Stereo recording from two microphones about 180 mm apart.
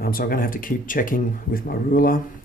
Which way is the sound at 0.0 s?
55° left (ahead or behind).